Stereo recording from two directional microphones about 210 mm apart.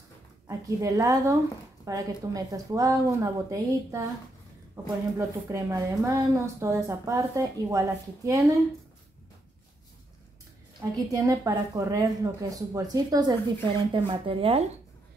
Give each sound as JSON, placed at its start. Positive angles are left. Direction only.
{"t": 0.5, "sound": "a woman's voice", "side_deg": -15}
{"t": 10.8, "sound": "a woman's voice", "side_deg": -15}